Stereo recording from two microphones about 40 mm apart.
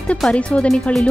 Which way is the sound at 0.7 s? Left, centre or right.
Centre.